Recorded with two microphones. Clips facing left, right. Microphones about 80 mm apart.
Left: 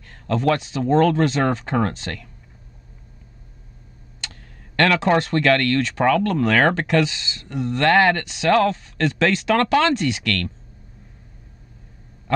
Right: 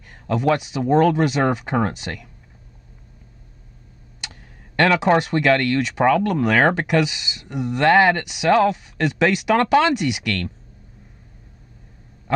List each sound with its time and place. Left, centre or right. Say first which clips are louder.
0.0 s speech: even; centre
4.2 s speech: even; centre
12.3 s a sound: even; centre